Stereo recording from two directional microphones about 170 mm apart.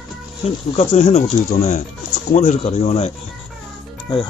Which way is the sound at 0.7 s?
40° left (ahead or behind).